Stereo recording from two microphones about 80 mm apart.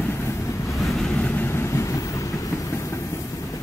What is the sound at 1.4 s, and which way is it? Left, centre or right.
Train, left.